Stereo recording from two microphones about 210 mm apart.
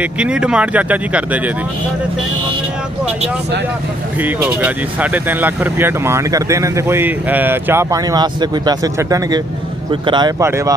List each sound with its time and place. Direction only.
0.0 s speech: 5° right (ahead or behind)
4.2 s speech: 10° right (ahead or behind)